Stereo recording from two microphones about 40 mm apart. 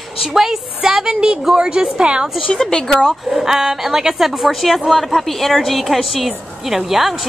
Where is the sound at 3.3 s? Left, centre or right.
Centre.